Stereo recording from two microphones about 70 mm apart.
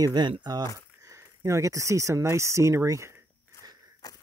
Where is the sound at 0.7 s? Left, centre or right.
Right.